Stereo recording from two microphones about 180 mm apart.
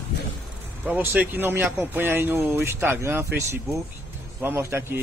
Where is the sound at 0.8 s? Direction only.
10° right (ahead or behind).